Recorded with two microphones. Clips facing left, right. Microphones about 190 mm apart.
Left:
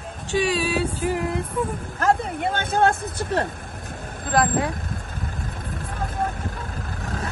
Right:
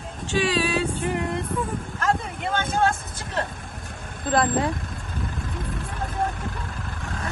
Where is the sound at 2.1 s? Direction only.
55° left (ahead or behind).